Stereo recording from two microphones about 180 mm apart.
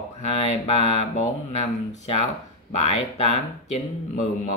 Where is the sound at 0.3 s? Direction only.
35° left (ahead or behind).